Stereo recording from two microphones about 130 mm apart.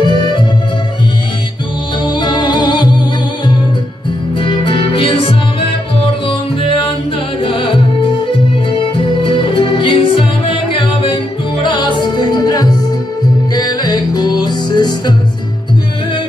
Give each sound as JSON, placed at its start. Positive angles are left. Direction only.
{"t": 0.0, "sound": "music", "side_deg": 35}
{"t": 2.0, "sound": "music", "side_deg": 35}
{"t": 4.4, "sound": "music", "side_deg": 40}
{"t": 7.4, "sound": "music", "side_deg": 40}